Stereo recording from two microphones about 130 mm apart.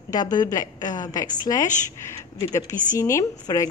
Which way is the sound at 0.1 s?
30° left (ahead or behind).